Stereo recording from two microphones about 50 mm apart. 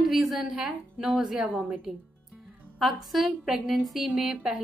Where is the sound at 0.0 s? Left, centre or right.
Centre.